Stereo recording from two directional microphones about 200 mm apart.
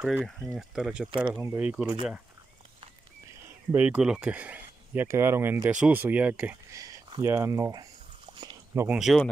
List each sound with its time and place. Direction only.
0.0 s speech: 5° right (ahead or behind)
3.7 s speech: 5° right (ahead or behind)
8.4 s a sound: 15° right (ahead or behind)
8.9 s speech: centre (ahead or behind)